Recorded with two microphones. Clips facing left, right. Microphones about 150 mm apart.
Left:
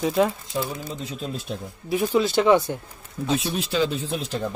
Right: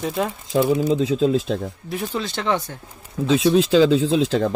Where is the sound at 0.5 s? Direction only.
90° right.